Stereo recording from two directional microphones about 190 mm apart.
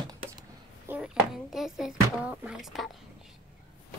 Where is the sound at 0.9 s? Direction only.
5° right (ahead or behind).